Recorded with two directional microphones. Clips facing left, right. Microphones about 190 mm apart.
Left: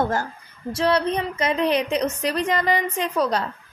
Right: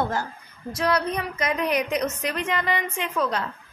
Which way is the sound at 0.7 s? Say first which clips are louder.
Left 3 dB; 30° left (ahead or behind).